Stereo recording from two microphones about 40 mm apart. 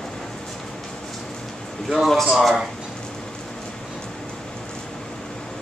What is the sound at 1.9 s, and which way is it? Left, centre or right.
Speech, centre.